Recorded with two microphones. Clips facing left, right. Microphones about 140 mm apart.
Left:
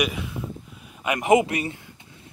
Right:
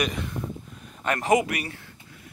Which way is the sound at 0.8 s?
10° left (ahead or behind).